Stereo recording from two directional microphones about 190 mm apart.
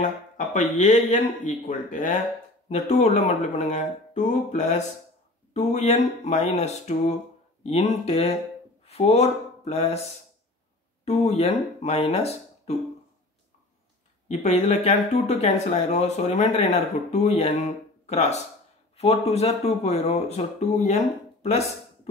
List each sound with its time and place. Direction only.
0.4 s speech: 40° left (ahead or behind)
11.1 s speech: 35° left (ahead or behind)
14.2 s speech: 35° left (ahead or behind)